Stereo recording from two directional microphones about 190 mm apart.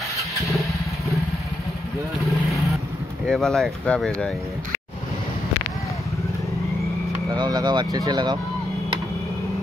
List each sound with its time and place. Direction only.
3.3 s speech: centre (ahead or behind)
7.2 s speech: 20° right (ahead or behind)